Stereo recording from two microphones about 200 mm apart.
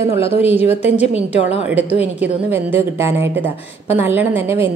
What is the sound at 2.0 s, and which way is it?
A woman's voice, 10° right (ahead or behind).